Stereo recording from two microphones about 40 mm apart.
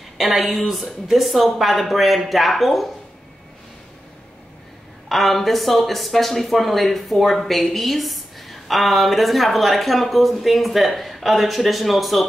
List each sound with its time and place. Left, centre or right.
0.2 s speech: centre
5.0 s speech: centre